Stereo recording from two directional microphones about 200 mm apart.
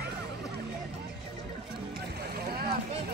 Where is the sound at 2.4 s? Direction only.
50° right (ahead or behind).